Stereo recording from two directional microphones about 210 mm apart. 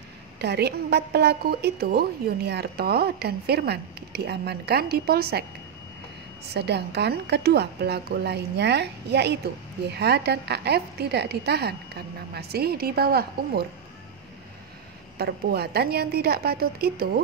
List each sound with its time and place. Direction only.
0.4 s a woman's voice: 50° right (ahead or behind)
6.5 s a woman's voice: 50° right (ahead or behind)
15.1 s a woman's voice: 50° right (ahead or behind)